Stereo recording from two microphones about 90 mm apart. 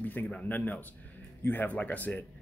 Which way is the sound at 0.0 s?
20° left (ahead or behind).